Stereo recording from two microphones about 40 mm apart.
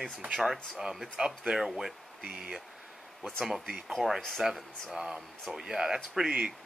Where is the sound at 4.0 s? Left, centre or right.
Centre.